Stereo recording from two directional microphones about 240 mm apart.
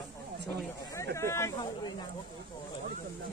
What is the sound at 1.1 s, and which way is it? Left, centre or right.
Speech, centre.